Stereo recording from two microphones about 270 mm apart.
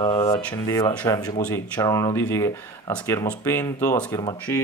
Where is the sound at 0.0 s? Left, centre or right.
Centre.